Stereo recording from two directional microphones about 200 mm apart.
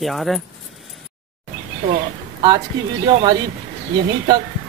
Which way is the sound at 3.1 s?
25° right (ahead or behind).